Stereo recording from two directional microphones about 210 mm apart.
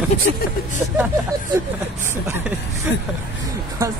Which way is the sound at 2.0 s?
10° right (ahead or behind).